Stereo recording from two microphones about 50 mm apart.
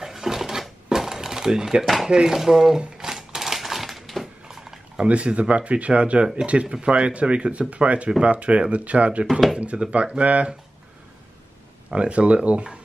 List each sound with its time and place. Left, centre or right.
0.0 s a sound: centre
2.0 s speech: centre
3.0 s crushing: centre
5.0 s speech: right
11.9 s speech: right